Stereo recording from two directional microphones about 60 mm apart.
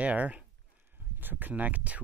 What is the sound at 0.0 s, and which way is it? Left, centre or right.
Speech, right.